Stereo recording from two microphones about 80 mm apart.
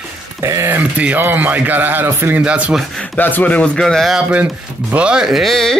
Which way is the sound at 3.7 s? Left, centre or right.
Centre.